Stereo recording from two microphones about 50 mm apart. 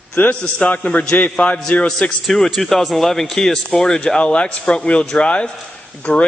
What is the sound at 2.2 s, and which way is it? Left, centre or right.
A man's voice, centre.